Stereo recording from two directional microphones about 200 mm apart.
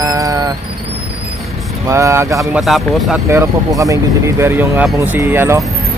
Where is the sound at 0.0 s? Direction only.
15° right (ahead or behind).